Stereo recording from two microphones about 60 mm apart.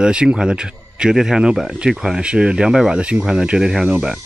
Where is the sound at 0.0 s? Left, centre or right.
Centre.